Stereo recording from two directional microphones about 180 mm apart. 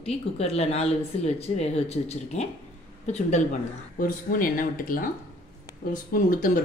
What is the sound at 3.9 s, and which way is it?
Speech, 50° left (ahead or behind).